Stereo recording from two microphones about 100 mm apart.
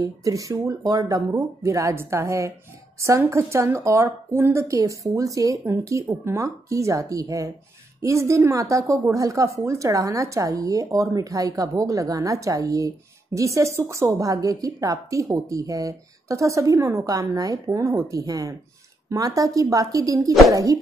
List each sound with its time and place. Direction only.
0.0 s speech: 35° right (ahead or behind)